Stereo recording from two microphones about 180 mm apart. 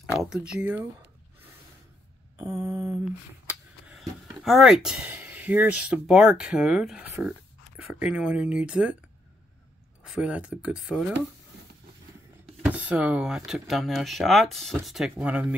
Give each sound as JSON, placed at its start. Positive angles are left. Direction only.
{"t": 0.2, "sound": "speech", "side_deg": -5}
{"t": 2.3, "sound": "a sound", "side_deg": -20}
{"t": 3.4, "sound": "speech", "side_deg": 0}
{"t": 10.0, "sound": "speech", "side_deg": -5}
{"t": 12.6, "sound": "speech", "side_deg": -10}